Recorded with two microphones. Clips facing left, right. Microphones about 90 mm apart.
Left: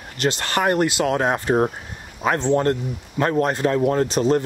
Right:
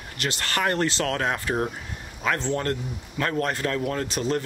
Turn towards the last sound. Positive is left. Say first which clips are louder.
# left 8 dB
turn(degrees=25)  # may be behind; listen again after turning